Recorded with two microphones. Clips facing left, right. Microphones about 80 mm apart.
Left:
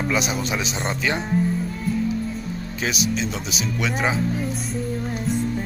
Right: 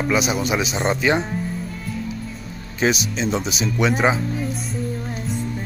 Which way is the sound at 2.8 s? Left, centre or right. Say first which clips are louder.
Right 4 dB; right.